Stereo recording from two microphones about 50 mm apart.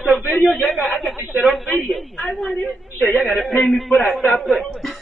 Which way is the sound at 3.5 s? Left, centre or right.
Centre.